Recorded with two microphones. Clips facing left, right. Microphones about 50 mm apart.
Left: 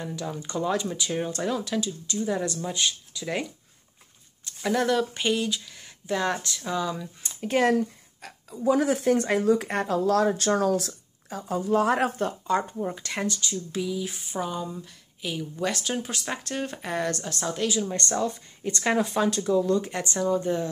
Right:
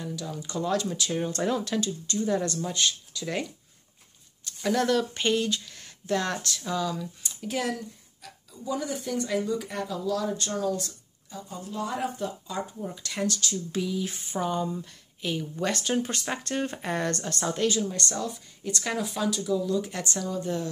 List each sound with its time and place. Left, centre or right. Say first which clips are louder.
0.0 s speech: left 2 dB; left
0.6 s speech: left 1 dB; centre
4.6 s speech: left 1 dB; centre
7.2 s a sound: left 8 dB; left
8.6 s speech: left 9 dB; left
10.3 s speech: left 6 dB; left
12.7 s speech: left 3 dB; left
13.5 s speech: even; centre
17.8 s speech: left 4 dB; left